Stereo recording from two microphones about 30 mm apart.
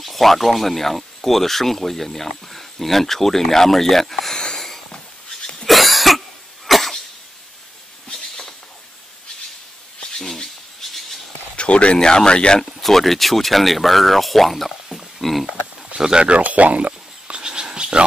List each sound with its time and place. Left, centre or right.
0.0 s speech: centre
5.7 s cough: centre
10.1 s a sound: centre
11.5 s speech: left
12.0 s speech: left
12.8 s speech: centre
16.2 s speech: right
16.5 s speech: right
17.4 s a sound: right